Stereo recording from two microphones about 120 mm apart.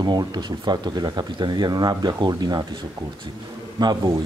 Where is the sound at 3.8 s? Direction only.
35° right (ahead or behind).